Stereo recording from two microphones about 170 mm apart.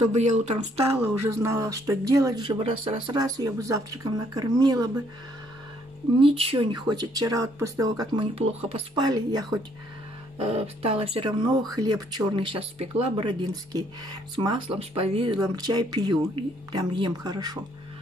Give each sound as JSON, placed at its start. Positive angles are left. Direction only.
{"t": 1.0, "sound": "speech", "side_deg": -15}
{"t": 6.1, "sound": "speech", "side_deg": -35}
{"t": 8.4, "sound": "speech", "side_deg": -35}
{"t": 8.9, "sound": "speech", "side_deg": -25}
{"t": 10.4, "sound": "speech", "side_deg": -35}